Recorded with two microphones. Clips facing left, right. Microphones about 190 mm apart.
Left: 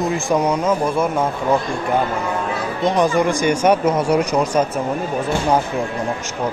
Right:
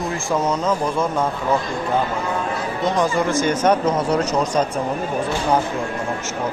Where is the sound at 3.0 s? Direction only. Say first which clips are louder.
Left 3 dB; 15° left (ahead or behind).